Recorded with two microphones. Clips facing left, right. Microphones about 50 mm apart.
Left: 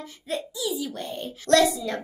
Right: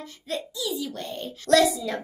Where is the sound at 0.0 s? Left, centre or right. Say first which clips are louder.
Left 1 dB; centre.